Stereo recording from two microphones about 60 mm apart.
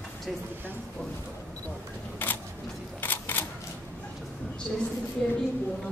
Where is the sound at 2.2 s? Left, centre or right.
Left.